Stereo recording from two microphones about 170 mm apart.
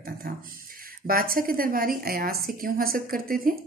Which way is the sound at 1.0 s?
60° right (ahead or behind).